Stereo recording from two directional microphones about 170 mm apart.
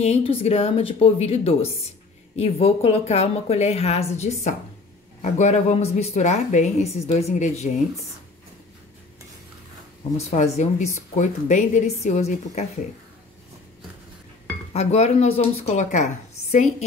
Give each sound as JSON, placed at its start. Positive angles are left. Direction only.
{"t": 0.0, "sound": "a woman's voice", "side_deg": 35}
{"t": 10.3, "sound": "a woman's voice", "side_deg": 40}
{"t": 14.7, "sound": "a woman's voice", "side_deg": 40}